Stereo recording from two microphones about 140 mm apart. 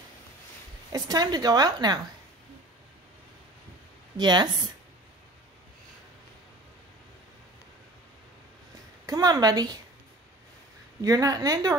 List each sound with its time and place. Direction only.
0.9 s a woman's voice: 30° right (ahead or behind)
4.2 s speech: 30° right (ahead or behind)
9.0 s a woman's voice: 30° right (ahead or behind)
11.0 s a woman's voice: 25° right (ahead or behind)